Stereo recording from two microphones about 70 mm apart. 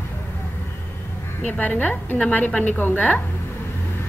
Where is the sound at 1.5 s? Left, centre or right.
Left.